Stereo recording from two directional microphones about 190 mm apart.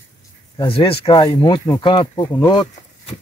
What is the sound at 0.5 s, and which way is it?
Speech, 30° left (ahead or behind).